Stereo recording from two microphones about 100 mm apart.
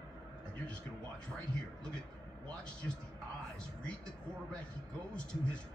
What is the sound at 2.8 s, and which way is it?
Speech, 20° left (ahead or behind).